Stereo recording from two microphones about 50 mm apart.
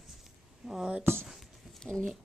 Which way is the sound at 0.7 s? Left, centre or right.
Centre.